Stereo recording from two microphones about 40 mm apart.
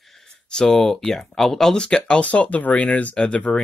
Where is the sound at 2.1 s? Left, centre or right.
Left.